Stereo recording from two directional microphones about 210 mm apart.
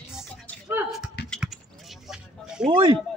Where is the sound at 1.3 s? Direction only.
Centre (ahead or behind).